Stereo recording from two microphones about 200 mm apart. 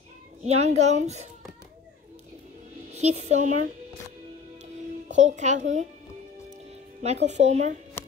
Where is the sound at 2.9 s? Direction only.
35° right (ahead or behind).